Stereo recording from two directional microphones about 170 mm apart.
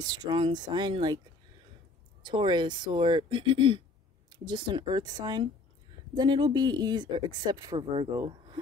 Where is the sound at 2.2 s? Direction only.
25° right (ahead or behind).